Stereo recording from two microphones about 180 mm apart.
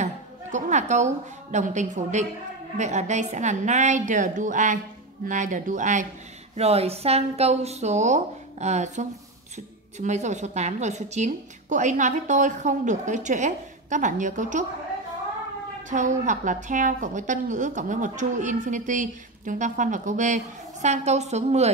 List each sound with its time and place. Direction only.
0.0 s a woman's voice: 40° right (ahead or behind)
15.9 s a woman's voice: 45° right (ahead or behind)